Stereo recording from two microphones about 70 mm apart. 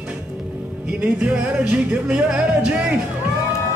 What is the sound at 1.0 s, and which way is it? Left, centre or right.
Music, centre.